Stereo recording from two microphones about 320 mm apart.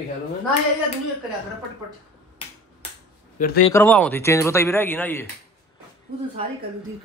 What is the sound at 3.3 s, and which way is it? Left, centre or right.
Speech, left.